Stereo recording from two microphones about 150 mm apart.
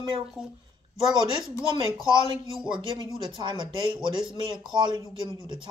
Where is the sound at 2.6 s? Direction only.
30° right (ahead or behind).